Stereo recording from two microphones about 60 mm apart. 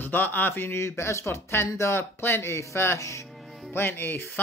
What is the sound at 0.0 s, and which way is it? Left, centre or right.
Speech, left.